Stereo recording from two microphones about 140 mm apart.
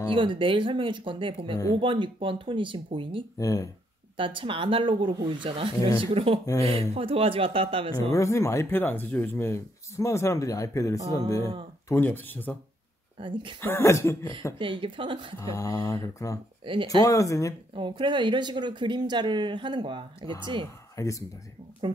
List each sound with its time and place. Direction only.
0.1 s speech: 35° right (ahead or behind)
3.3 s speech: 25° left (ahead or behind)
4.2 s speech: 35° right (ahead or behind)
5.8 s speech: 25° left (ahead or behind)
6.1 s speech: 40° right (ahead or behind)
8.1 s speech: 20° left (ahead or behind)
13.2 s speech: 35° right (ahead or behind)
13.6 s speech: 15° left (ahead or behind)
14.6 s speech: 35° right (ahead or behind)
15.3 s speech: 20° left (ahead or behind)
16.6 s speech: 40° right (ahead or behind)
17.0 s speech: 25° left (ahead or behind)
17.7 s speech: 35° right (ahead or behind)
20.9 s speech: 25° left (ahead or behind)